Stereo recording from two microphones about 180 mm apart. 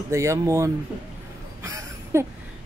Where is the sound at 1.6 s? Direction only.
15° right (ahead or behind).